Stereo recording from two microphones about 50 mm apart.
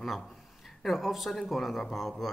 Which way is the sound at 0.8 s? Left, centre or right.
Centre.